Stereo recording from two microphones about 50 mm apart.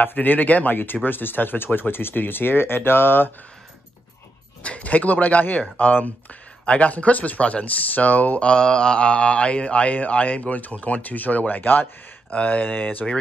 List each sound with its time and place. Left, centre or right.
0.0 s speech: left
4.6 s speech: left
12.3 s speech: left